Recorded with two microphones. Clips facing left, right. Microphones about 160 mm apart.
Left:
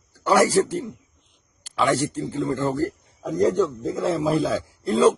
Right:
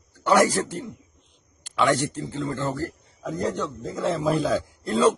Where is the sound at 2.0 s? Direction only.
10° left (ahead or behind).